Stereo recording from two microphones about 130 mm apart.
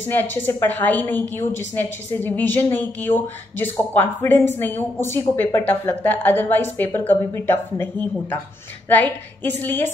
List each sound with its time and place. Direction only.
0.1 s a woman's voice: 15° left (ahead or behind)